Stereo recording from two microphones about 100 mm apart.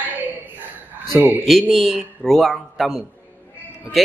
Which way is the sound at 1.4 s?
Centre (ahead or behind).